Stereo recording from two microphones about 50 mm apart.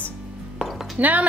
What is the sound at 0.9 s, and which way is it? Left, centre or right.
Speech, right.